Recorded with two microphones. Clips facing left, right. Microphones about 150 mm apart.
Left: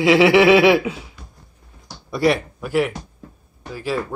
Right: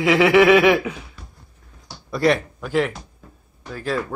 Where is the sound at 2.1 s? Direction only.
5° left (ahead or behind).